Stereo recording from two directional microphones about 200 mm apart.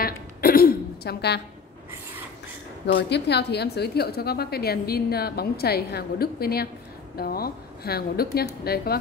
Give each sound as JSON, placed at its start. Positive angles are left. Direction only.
{"t": 0.0, "sound": "throat clearing", "side_deg": 50}
{"t": 2.9, "sound": "a woman's voice", "side_deg": 60}